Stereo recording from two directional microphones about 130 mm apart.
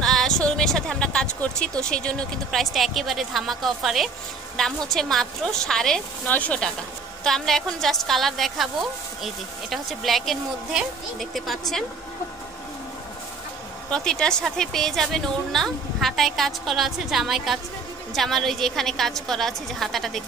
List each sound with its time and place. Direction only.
0.0 s a sound: 5° left (ahead or behind)
1.8 s a woman's voice: 5° left (ahead or behind)
13.9 s a woman's voice: 5° left (ahead or behind)